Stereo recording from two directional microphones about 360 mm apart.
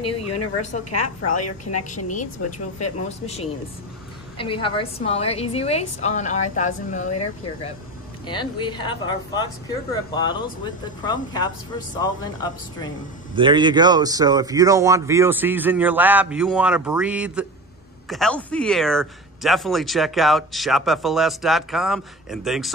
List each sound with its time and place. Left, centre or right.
0.0 s a woman's voice: centre
4.4 s a woman's voice: centre
8.3 s a woman's voice: centre
13.4 s speech: centre